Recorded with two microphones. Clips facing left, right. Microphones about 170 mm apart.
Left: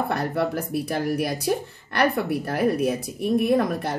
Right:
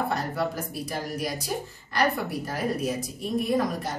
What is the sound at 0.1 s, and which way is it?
A woman's voice, 60° left (ahead or behind).